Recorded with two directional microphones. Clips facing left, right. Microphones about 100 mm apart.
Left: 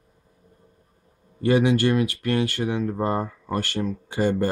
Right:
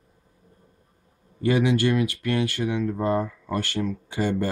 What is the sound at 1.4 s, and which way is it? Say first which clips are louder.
Speech: left 2 dB; 40° left (ahead or behind).